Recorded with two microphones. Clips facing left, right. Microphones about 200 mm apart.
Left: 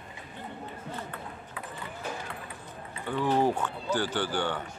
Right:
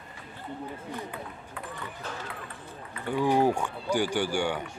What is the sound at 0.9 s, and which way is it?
Run, 15° right (ahead or behind).